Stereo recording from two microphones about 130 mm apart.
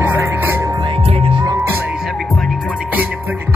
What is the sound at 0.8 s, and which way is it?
Music, 45° right (ahead or behind).